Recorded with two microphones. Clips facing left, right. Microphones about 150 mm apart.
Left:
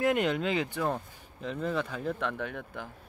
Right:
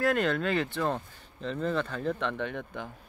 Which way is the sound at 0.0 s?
15° left (ahead or behind).